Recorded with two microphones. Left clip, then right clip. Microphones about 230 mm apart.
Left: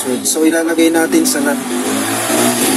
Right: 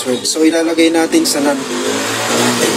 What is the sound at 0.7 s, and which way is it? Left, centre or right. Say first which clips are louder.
Speech: even; centre.